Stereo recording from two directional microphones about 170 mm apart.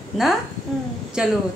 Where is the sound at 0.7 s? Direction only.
Centre (ahead or behind).